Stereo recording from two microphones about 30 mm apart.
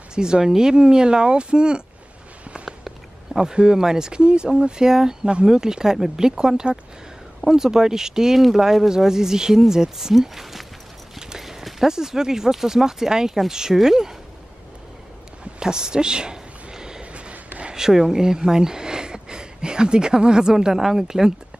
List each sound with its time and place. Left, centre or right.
0.1 s speech: right
3.3 s a sound: right
3.7 s speech: centre
11.1 s clip-clop: centre
11.9 s speech: centre
15.6 s a sound: right
17.0 s a sound: right
17.7 s speech: centre
20.5 s speech: centre